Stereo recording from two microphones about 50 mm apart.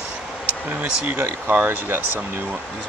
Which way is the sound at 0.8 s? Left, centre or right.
Right.